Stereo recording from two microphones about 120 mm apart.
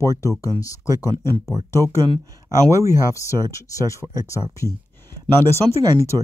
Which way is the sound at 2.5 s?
25° right (ahead or behind).